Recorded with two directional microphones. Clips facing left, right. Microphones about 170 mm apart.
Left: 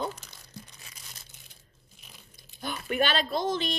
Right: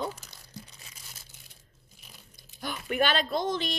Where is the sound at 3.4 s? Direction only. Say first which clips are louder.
Left 1 dB; 25° left (ahead or behind).